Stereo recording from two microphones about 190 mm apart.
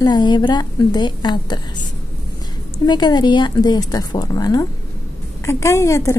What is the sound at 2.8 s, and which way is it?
A woman's voice, 20° left (ahead or behind).